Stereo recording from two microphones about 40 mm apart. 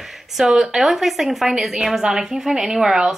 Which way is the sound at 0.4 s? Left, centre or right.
Centre.